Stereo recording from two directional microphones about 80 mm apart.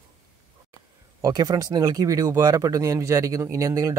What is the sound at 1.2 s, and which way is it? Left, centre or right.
Speech, right.